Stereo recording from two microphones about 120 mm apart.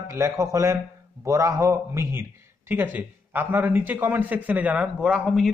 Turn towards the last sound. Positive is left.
turn(degrees=0)  # may be behind; listen again after turning